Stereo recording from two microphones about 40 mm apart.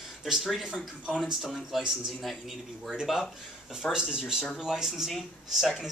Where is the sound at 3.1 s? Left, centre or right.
Centre.